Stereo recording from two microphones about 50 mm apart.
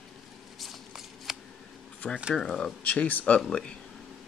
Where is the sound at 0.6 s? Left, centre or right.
Centre.